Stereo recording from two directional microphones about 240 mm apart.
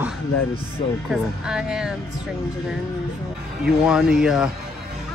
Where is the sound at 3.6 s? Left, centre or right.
Centre.